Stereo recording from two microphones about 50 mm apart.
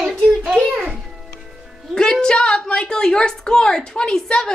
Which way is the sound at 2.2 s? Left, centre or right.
Centre.